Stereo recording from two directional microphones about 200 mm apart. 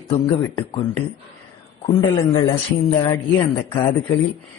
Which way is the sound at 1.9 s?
20° left (ahead or behind).